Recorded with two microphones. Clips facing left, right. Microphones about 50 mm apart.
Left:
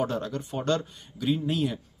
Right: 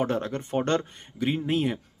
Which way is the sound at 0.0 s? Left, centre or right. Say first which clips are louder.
Right 2 dB; right.